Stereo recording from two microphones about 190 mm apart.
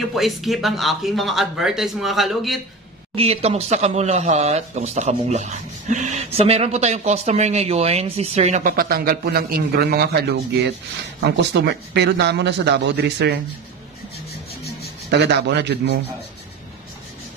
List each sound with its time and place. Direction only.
0.1 s speech: centre (ahead or behind)
3.2 s speech: 30° right (ahead or behind); by 13.4 s 60° right (ahead or behind)
15.0 s speech: 65° right (ahead or behind)